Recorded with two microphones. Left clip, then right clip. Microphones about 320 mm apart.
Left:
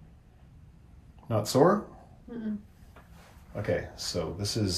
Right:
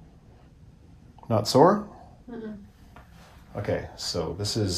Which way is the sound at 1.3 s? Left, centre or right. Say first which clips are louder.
Right 4 dB; centre.